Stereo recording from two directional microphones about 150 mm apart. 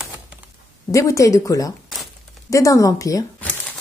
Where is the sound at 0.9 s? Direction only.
20° left (ahead or behind).